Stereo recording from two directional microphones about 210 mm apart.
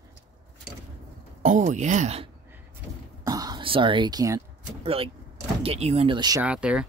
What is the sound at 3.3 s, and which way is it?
Throat clearing, 20° right (ahead or behind).